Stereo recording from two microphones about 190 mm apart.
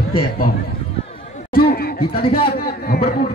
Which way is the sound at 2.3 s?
50° left (ahead or behind).